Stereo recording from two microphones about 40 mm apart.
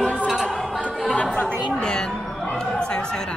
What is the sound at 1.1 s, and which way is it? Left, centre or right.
Chatter, left.